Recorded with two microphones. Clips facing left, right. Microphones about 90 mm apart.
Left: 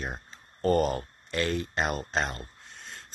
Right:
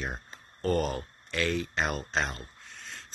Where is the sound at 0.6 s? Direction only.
45° left (ahead or behind).